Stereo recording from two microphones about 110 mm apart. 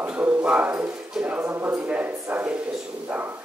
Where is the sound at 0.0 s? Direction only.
15° right (ahead or behind).